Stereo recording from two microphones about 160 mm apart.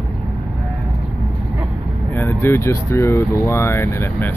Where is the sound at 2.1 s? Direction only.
15° left (ahead or behind).